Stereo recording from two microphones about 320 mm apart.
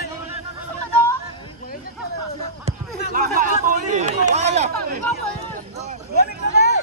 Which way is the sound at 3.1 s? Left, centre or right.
Right.